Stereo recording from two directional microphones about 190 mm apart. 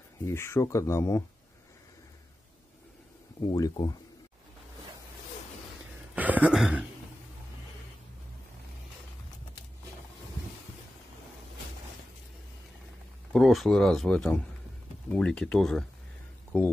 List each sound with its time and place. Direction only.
0.2 s speech: 15° left (ahead or behind)
3.5 s speech: 20° left (ahead or behind)
6.1 s a sound: 10° right (ahead or behind)
13.3 s speech: centre (ahead or behind)